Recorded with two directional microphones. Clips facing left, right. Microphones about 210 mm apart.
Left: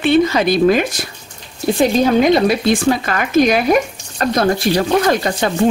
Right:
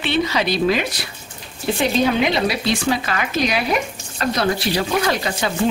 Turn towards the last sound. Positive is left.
turn(degrees=45)  # may be behind; listen again after turning